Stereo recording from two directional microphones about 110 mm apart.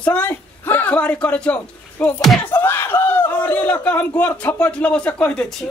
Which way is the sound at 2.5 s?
20° left (ahead or behind).